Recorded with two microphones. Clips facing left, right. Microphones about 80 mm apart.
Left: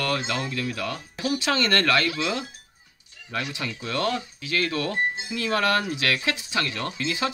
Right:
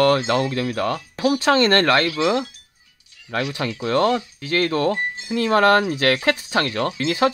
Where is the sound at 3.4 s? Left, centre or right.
Right.